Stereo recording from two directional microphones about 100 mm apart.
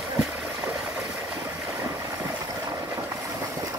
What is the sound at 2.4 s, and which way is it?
Vehicle, 35° right (ahead or behind).